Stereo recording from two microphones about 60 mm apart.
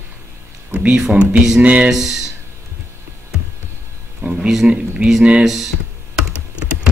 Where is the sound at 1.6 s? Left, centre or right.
Right.